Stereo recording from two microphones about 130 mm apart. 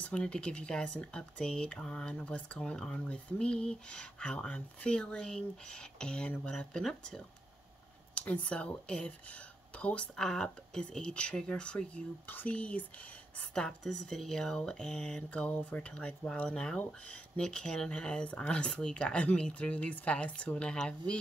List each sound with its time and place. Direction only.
0.0 s speech: 10° left (ahead or behind)